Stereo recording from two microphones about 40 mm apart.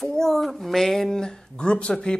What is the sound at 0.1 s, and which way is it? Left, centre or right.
Speech, centre.